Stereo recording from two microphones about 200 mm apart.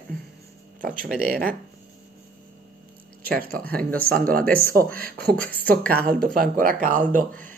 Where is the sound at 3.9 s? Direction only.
45° right (ahead or behind).